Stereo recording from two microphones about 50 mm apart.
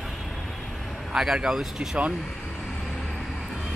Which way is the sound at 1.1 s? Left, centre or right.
Centre.